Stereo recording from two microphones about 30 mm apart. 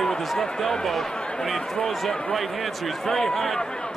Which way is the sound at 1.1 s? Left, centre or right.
Left.